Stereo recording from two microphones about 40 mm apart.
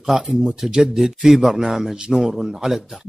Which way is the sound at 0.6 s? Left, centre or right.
Right.